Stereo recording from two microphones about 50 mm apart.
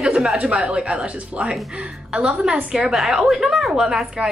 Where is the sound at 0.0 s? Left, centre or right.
Centre.